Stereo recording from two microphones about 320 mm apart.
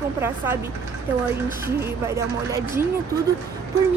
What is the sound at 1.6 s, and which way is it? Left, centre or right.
Speech, centre.